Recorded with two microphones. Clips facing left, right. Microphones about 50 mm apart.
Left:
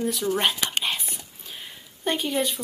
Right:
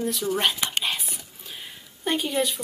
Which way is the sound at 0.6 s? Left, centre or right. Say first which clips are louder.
Even; centre.